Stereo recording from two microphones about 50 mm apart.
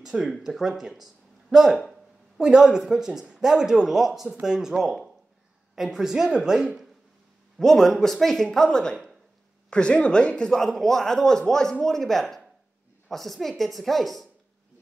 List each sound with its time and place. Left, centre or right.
0.1 s speech: centre
7.6 s a man's voice: centre
8.5 s a man's voice: centre
10.6 s a man's voice: centre